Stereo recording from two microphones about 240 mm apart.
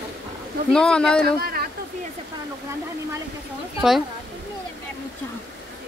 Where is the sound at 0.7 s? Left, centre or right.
Centre.